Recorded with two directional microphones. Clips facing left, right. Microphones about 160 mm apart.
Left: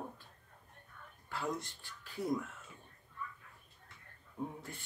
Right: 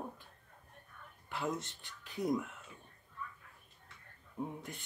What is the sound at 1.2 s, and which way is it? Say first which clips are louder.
Speech: right 1 dB; 20° right (ahead or behind).